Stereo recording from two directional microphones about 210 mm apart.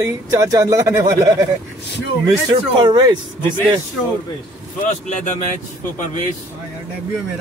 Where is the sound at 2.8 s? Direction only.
20° right (ahead or behind).